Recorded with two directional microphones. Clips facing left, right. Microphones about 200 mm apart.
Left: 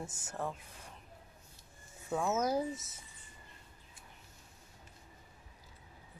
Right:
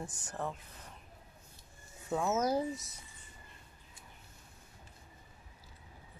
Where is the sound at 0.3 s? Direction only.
10° left (ahead or behind).